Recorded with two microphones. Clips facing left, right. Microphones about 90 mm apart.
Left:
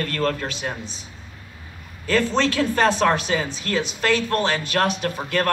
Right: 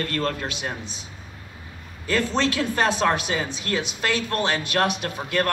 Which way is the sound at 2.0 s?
20° right (ahead or behind).